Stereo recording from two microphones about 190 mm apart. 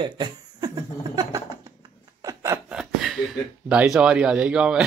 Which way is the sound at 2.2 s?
15° right (ahead or behind).